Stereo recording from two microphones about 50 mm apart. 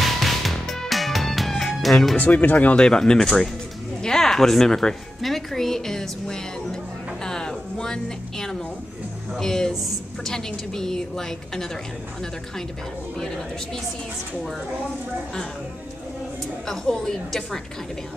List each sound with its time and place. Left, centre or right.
0.0 s music: centre
2.1 s speech: left
2.7 s speech: centre
7.2 s a sound: centre
9.4 s speech: centre
9.7 s a woman's voice: centre
10.3 s speech: centre
16.6 s speech: centre